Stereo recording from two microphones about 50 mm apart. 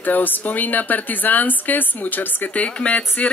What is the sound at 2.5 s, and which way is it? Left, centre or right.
Speech, left.